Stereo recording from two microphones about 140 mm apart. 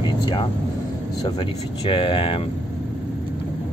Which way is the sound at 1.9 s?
35° left (ahead or behind).